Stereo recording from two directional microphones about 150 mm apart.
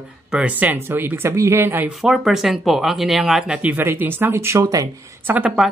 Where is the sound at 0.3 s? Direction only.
10° right (ahead or behind).